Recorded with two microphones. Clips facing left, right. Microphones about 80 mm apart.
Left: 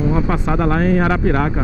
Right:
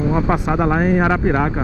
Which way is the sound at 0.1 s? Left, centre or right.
Centre.